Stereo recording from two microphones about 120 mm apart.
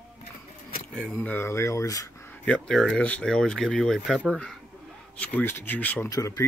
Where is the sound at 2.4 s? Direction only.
10° left (ahead or behind).